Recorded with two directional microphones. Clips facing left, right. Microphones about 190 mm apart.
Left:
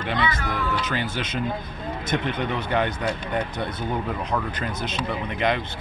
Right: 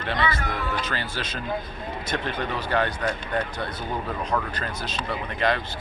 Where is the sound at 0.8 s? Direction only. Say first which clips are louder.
Left 3 dB; 20° left (ahead or behind).